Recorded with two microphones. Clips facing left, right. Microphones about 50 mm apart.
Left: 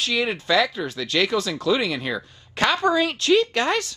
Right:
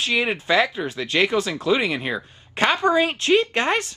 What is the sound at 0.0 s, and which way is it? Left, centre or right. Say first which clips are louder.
Speech: right 2 dB; right.